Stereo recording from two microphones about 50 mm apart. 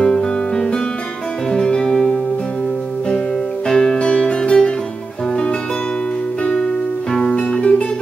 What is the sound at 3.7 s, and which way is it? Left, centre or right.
Music, centre.